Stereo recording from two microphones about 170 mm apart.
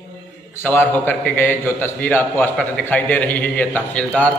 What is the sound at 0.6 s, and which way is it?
A man's voice, 10° left (ahead or behind).